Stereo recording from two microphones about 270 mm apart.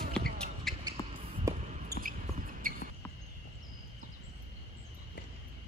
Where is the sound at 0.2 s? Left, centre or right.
Centre.